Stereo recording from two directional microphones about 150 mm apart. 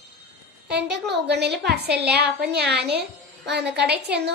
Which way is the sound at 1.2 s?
90° right.